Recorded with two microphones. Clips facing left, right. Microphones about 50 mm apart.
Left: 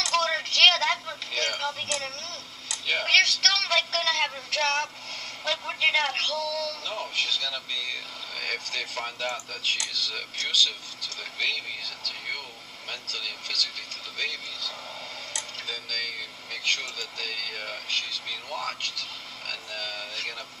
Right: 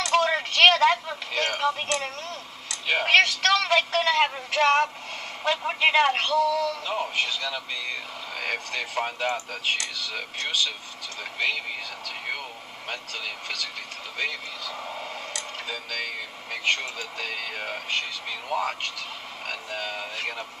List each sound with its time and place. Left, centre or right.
0.0 s speech: centre
15.3 s tick-tock: centre
16.6 s speech: centre